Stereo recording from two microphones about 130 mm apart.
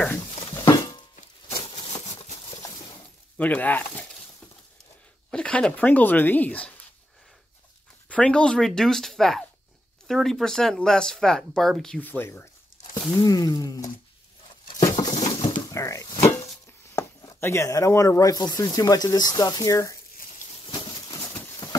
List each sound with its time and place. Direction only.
0.3 s a sound: 45° left (ahead or behind)
3.3 s speech: 10° left (ahead or behind)
5.3 s speech: 5° left (ahead or behind)
8.1 s speech: 5° left (ahead or behind)
12.9 s speech: 30° left (ahead or behind)
14.8 s patter: 25° left (ahead or behind)
15.2 s a sound: 30° left (ahead or behind)
16.9 s speech: 25° left (ahead or behind)
20.4 s a sound: 40° left (ahead or behind)